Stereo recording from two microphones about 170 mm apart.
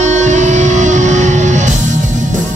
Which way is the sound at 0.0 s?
45° right (ahead or behind).